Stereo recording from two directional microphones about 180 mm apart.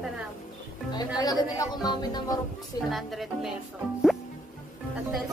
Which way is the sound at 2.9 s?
Centre (ahead or behind).